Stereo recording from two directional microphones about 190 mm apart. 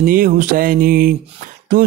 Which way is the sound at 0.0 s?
45° right (ahead or behind).